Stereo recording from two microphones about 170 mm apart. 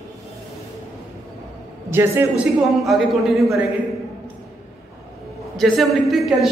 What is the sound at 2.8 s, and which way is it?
Speech, centre (ahead or behind).